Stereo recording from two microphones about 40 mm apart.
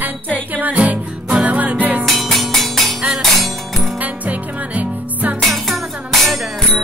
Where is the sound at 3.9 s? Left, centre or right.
Right.